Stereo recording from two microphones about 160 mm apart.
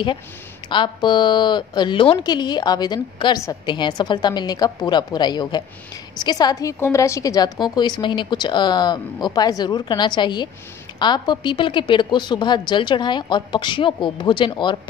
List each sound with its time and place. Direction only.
0.7 s speech: 30° left (ahead or behind)